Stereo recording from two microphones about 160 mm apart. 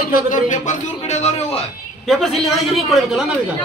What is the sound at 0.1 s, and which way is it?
A man's voice, 55° left (ahead or behind).